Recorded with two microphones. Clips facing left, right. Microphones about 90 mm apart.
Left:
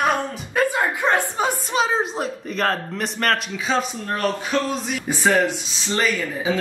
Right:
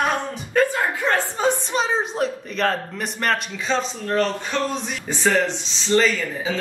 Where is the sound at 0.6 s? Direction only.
15° left (ahead or behind).